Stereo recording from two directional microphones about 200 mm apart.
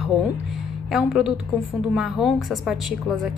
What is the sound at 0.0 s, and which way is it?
A woman's voice, centre (ahead or behind).